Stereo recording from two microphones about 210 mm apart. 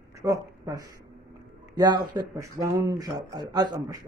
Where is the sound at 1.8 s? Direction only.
20° right (ahead or behind).